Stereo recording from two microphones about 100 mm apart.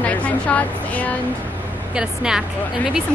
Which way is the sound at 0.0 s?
15° left (ahead or behind).